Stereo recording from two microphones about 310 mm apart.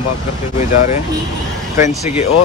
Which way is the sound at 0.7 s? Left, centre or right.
Left.